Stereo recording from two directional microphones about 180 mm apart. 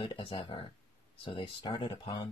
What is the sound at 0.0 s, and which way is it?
Speech, 30° left (ahead or behind).